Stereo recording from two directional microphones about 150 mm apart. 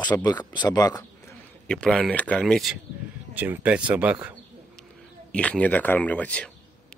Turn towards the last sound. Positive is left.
turn(degrees=5)  # may be behind; listen again after turning